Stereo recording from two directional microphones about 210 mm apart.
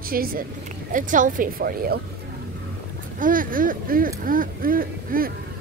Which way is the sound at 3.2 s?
40° right (ahead or behind).